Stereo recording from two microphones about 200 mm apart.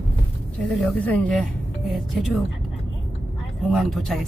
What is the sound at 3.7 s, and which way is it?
Speech, centre (ahead or behind).